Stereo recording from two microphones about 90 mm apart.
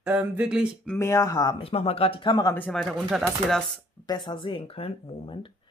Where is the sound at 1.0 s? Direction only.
35° left (ahead or behind).